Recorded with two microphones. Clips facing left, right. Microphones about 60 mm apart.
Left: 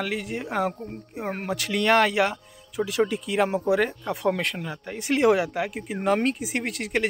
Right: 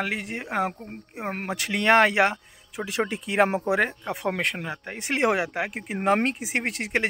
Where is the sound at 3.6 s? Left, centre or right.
Right.